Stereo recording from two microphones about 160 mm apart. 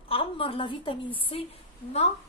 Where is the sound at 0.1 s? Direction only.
35° left (ahead or behind).